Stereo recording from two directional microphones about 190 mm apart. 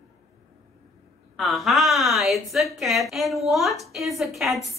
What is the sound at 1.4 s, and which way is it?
A woman's voice, centre (ahead or behind).